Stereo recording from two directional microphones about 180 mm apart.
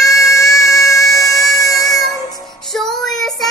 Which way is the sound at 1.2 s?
Centre (ahead or behind).